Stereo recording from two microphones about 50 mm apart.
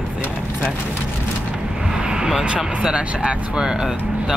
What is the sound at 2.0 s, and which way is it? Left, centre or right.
Vehicle, centre.